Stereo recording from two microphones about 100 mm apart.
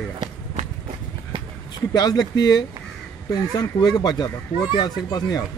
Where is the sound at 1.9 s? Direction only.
40° left (ahead or behind).